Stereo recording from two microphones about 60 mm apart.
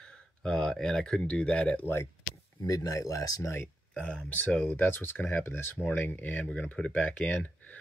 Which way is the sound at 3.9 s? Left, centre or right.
Centre.